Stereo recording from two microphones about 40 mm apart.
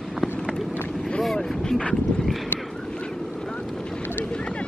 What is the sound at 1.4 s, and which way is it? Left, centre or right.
Boat, centre.